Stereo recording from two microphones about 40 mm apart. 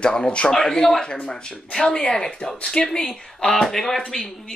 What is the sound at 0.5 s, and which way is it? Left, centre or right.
Speech, centre.